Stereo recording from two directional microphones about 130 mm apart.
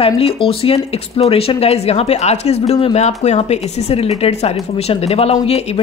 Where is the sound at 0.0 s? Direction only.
50° left (ahead or behind).